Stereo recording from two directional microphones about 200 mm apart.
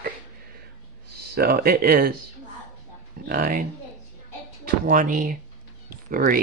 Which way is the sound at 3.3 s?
45° right (ahead or behind).